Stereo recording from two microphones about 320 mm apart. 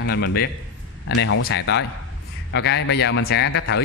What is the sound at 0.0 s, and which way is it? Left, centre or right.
Speech, left.